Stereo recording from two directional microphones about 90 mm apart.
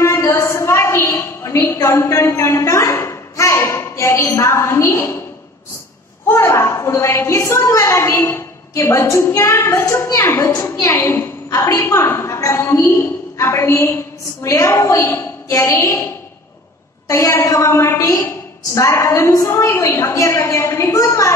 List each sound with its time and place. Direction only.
0.0 s a sound: 30° left (ahead or behind)
6.2 s a woman's voice: 30° left (ahead or behind)
17.1 s a woman's voice: 35° left (ahead or behind)